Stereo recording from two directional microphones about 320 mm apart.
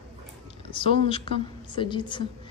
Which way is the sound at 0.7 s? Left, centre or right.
Centre.